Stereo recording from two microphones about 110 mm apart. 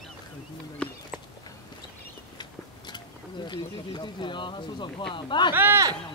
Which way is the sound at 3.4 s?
45° left (ahead or behind).